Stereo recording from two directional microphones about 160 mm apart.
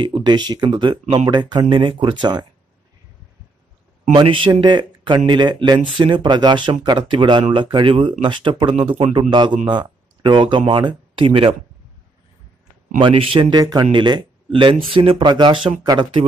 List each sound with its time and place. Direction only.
0.0 s speech: 30° right (ahead or behind)
4.1 s speech: 30° right (ahead or behind)
13.0 s speech: 35° right (ahead or behind)